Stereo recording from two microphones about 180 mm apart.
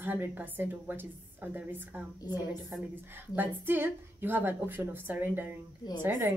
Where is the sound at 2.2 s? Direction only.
20° left (ahead or behind).